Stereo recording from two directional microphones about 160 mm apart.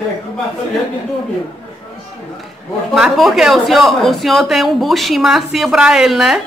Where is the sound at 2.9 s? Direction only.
Centre (ahead or behind).